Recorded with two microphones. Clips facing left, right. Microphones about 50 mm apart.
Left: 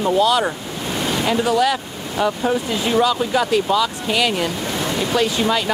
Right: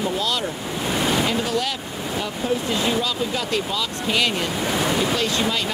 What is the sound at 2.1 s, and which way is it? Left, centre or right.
Speech, left.